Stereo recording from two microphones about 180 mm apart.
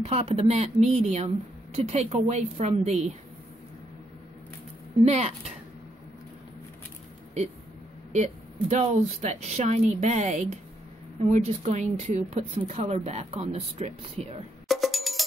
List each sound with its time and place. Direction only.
0.0 s speech: 35° right (ahead or behind)
5.0 s speech: 35° right (ahead or behind)
8.1 s speech: 40° right (ahead or behind)
14.7 s music: centre (ahead or behind)